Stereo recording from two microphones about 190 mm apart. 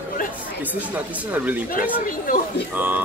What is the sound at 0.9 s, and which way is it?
Speech, 5° right (ahead or behind).